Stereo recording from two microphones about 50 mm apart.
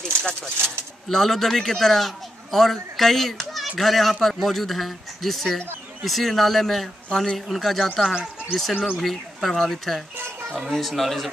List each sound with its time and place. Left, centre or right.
0.0 s speech: centre
7.1 s a man's voice: centre
7.3 s speech: centre